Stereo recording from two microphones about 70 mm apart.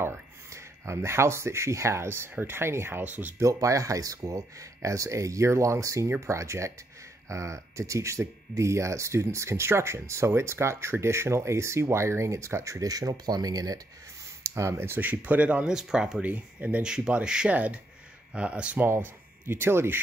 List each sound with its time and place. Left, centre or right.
0.0 s speech: right
3.0 s speech: right
3.5 s speech: right
14.4 s a sound: right
14.8 s speech: right; by 16.2 s centre
16.2 s speech: right
16.8 s speech: centre
18.9 s speech: right